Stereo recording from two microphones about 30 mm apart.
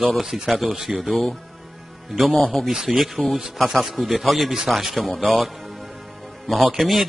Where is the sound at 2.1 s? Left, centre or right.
Centre.